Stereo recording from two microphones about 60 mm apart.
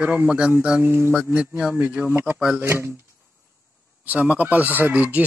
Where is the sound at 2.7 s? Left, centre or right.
Right.